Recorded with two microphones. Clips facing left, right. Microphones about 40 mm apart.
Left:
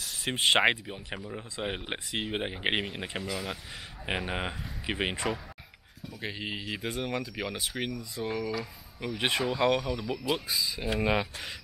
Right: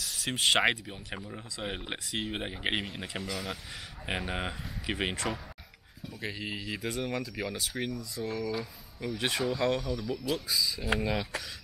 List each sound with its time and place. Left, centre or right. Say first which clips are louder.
0.2 s speech: left 2 dB; centre